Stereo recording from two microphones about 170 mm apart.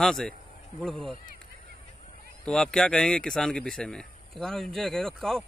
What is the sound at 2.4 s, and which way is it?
A man's voice, 5° left (ahead or behind).